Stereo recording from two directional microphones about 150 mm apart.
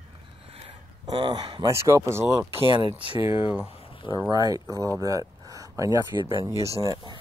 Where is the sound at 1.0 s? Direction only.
30° right (ahead or behind).